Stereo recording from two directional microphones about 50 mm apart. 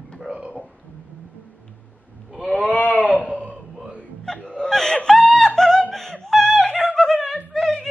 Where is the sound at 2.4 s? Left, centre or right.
Right.